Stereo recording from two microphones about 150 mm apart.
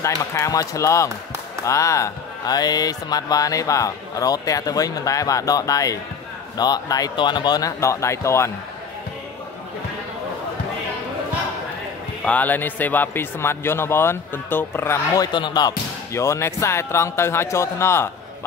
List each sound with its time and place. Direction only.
0.0 s speech: 20° left (ahead or behind)
12.3 s a man's voice: 10° left (ahead or behind)
15.3 s a man's voice: 30° left (ahead or behind)